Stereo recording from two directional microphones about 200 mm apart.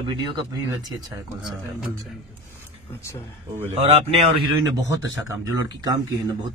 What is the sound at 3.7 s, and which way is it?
Speech, 30° right (ahead or behind).